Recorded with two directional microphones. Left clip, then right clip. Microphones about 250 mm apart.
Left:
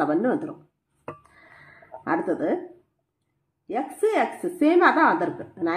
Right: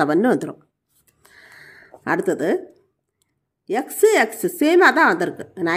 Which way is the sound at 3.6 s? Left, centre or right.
Right.